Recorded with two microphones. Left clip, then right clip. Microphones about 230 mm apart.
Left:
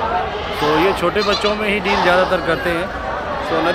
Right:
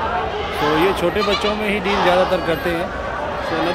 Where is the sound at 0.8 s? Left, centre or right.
Centre.